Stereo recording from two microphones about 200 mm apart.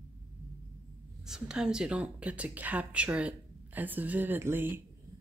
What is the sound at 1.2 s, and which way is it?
Speech, 5° right (ahead or behind).